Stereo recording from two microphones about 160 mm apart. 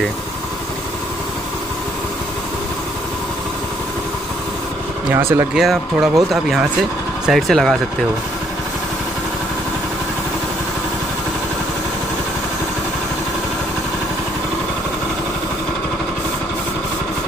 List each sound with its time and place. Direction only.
5.1 s speech: 15° right (ahead or behind)
5.5 s speech: centre (ahead or behind)
7.2 s speech: centre (ahead or behind)